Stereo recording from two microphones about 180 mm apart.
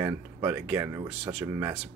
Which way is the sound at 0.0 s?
10° right (ahead or behind).